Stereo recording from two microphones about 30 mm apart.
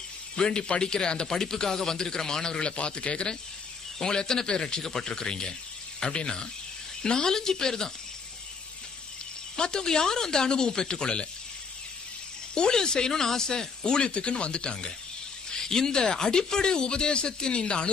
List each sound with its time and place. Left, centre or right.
0.4 s speech: left
2.7 s speech: left
4.0 s speech: left
9.6 s speech: left
12.5 s speech: left
15.6 s speech: centre